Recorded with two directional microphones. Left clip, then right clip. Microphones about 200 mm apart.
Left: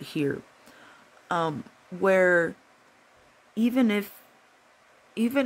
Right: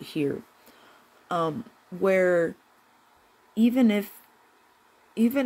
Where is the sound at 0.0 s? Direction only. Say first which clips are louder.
Right 1 dB; 20° left (ahead or behind).